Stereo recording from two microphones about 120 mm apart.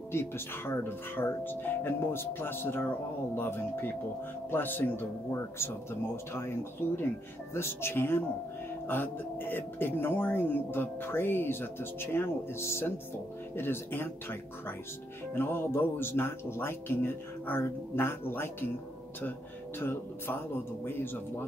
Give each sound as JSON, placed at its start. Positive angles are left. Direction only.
{"t": 0.1, "sound": "speech", "side_deg": 20}
{"t": 6.8, "sound": "speech", "side_deg": 20}
{"t": 19.8, "sound": "speech", "side_deg": 20}